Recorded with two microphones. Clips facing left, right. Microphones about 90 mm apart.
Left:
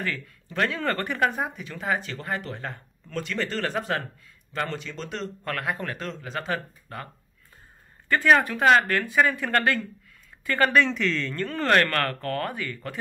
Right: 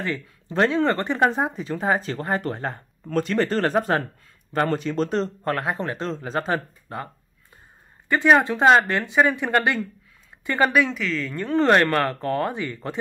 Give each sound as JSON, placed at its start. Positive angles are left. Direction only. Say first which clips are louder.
{"t": 0.0, "sound": "speech", "louder": "right 3 dB", "side_deg": -25}
{"t": 8.1, "sound": "speech", "louder": "right 3 dB", "side_deg": -20}
{"t": 11.3, "sound": "speech", "louder": "right 5 dB", "side_deg": -20}